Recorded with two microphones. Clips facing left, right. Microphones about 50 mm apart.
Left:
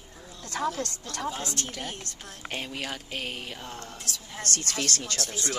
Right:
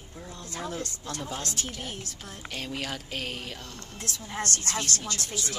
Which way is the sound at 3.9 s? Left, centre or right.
Right.